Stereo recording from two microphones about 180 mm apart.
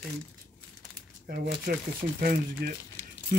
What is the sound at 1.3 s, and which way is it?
Speech, 60° right (ahead or behind).